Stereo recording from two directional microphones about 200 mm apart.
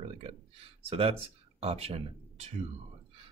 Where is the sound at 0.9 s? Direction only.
30° right (ahead or behind).